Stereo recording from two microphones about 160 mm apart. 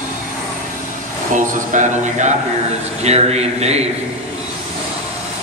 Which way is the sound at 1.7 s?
50° right (ahead or behind).